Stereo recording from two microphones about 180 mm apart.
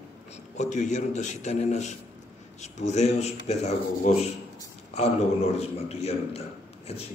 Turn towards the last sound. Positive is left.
turn(degrees=35)  # may be behind; listen again after turning